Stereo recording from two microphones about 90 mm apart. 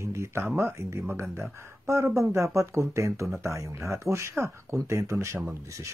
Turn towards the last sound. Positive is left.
turn(degrees=-35)  # may be behind; listen again after turning